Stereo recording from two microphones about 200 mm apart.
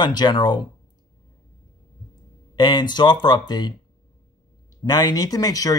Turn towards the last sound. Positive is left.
turn(degrees=20)  # may be behind; listen again after turning